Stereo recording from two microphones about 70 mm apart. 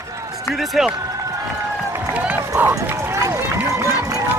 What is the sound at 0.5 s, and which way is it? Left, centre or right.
Speech, centre.